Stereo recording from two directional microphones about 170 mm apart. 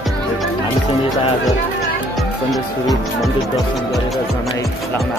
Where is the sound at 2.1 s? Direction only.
Centre (ahead or behind).